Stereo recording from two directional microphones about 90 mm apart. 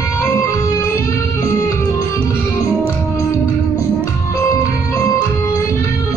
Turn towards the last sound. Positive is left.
turn(degrees=35)  # may be behind; listen again after turning